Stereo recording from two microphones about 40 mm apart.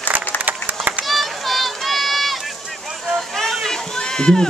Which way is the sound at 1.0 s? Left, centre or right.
Centre.